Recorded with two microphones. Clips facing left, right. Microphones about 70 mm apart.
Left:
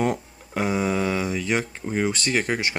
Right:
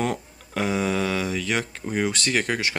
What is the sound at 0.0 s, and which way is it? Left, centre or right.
Mantra, centre.